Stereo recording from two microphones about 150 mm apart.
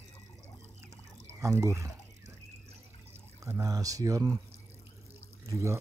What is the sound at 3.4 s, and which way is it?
Speech, 20° right (ahead or behind).